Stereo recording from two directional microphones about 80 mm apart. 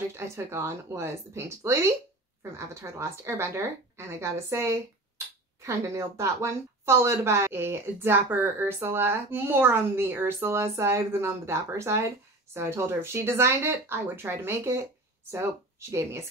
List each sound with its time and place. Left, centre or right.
0.1 s a woman's voice: right
15.9 s a woman's voice: right